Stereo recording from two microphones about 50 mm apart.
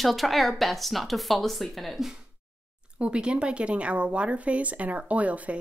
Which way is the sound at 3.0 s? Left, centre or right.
Right.